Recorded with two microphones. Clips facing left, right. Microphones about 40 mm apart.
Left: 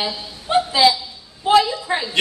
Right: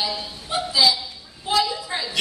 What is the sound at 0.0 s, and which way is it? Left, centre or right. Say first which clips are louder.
Speech: left 1 dB; left.